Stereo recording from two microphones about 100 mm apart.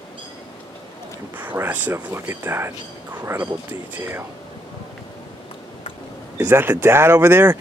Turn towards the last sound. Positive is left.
turn(degrees=-25)  # may be behind; listen again after turning